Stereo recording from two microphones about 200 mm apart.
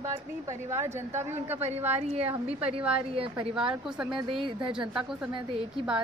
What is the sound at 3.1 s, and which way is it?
Speech, 25° right (ahead or behind).